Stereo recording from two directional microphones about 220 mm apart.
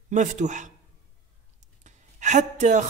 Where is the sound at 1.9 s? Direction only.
35° right (ahead or behind).